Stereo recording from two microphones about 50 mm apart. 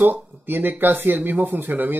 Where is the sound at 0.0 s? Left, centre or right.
Right.